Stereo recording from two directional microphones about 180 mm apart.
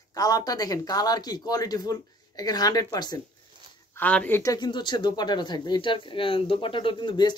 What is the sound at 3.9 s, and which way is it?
Speech, 10° left (ahead or behind).